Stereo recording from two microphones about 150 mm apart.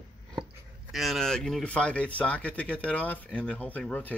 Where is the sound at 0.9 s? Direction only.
Centre (ahead or behind).